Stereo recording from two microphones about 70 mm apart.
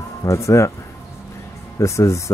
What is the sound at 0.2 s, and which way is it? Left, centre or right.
Speech, left.